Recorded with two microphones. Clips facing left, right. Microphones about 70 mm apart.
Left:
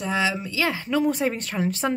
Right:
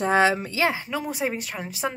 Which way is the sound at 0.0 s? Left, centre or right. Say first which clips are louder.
Right 5 dB; right.